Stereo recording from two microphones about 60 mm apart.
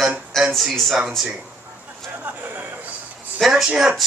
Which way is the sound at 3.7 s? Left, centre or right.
Centre.